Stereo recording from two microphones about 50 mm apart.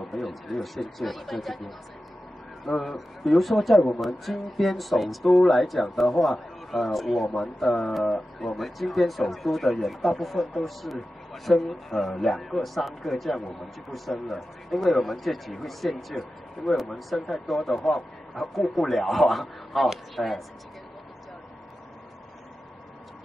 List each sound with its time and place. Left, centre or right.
0.1 s speech: centre
2.6 s speech: centre